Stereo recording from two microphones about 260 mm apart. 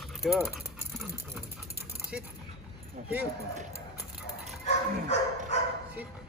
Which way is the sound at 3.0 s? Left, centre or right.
Right.